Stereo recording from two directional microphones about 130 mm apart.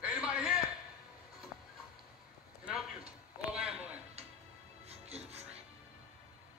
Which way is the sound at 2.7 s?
5° right (ahead or behind).